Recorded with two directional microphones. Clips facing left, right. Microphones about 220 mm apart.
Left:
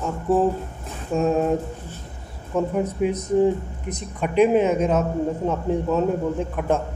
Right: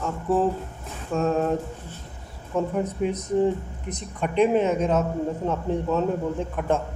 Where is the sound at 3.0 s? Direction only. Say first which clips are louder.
Left 4 dB; 10° left (ahead or behind).